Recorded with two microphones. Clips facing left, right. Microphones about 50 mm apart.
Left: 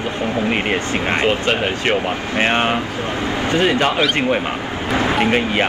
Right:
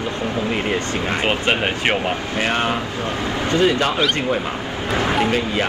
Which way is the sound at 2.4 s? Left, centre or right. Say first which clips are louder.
Left 4 dB; left.